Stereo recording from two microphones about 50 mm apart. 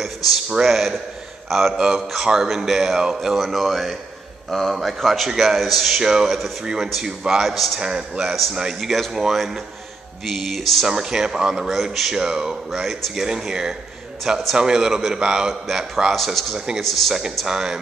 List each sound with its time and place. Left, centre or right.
0.0 s a sound: centre
0.7 s a man's voice: centre
5.9 s speech: centre
7.8 s speech: centre
8.7 s speech: centre
10.9 s speech: centre
16.5 s speech: centre
16.8 s speech: centre
17.5 s speech: centre